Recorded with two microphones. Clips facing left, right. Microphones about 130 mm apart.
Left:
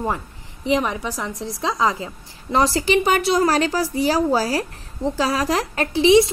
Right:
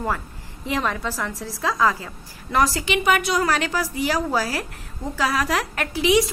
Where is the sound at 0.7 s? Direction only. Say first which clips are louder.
Left 4 dB; 15° left (ahead or behind).